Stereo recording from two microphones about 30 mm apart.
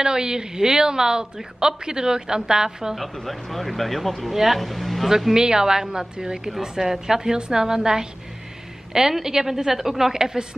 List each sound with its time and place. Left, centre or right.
0.0 s speech: right
3.0 s speech: centre
5.3 s a woman's voice: right
7.3 s a woman's voice: right